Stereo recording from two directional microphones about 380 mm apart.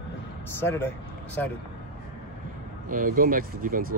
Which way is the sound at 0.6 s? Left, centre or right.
Centre.